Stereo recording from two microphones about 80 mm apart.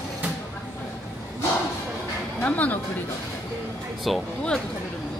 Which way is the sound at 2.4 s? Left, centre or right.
Centre.